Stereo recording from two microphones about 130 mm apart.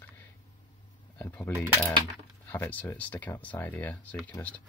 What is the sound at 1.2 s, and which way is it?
Speech, 10° left (ahead or behind).